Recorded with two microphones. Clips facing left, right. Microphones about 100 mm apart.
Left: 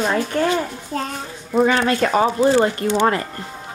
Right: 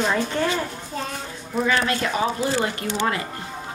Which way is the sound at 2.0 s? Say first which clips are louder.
Left 7 dB; 45° left (ahead or behind).